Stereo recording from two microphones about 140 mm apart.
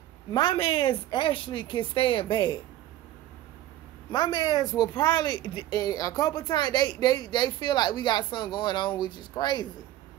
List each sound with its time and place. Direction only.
0.3 s speech: 30° left (ahead or behind)
4.1 s speech: 30° left (ahead or behind)